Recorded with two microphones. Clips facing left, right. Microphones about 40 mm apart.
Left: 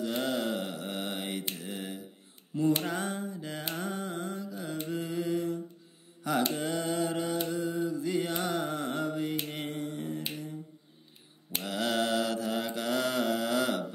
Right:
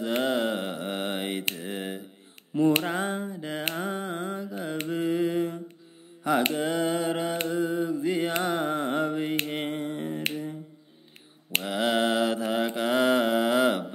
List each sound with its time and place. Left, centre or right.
0.2 s mantra: right
1.5 s a sound: right
2.8 s mantra: right
3.7 s a sound: right
4.8 s mantra: right
8.4 s carnatic music: right
9.5 s finger snapping: right
11.6 s mantra: right